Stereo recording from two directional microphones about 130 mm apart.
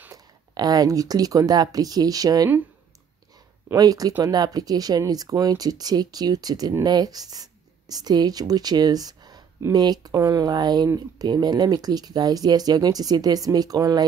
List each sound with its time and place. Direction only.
0.1 s speech: 30° right (ahead or behind)
3.7 s speech: 30° right (ahead or behind)